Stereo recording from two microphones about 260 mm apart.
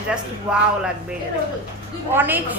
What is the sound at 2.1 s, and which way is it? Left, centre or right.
Speech, centre.